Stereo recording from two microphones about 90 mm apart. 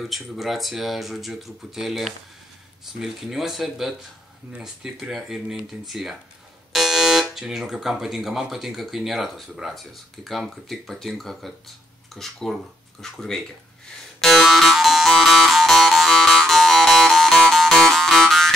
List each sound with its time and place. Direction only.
0.0 s speech: centre (ahead or behind)
14.2 s music: centre (ahead or behind)